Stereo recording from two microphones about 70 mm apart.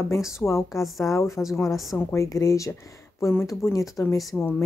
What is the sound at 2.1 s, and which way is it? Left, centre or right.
Speech, left.